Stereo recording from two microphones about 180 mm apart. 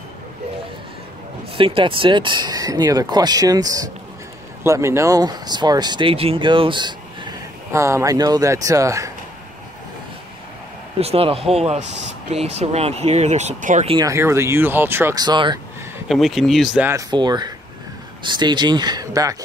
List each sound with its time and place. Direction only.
1.6 s speech: 30° right (ahead or behind)
11.0 s speech: 35° right (ahead or behind)
13.8 s speech: 20° right (ahead or behind)
16.1 s speech: centre (ahead or behind)
16.9 s speech: 25° right (ahead or behind)